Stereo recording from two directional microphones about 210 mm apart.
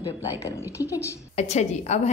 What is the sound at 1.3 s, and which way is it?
Speech, 30° left (ahead or behind).